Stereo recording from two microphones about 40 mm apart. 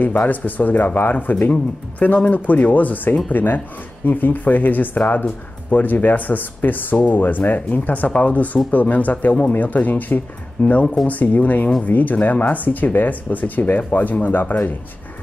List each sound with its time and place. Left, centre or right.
0.3 s speech: left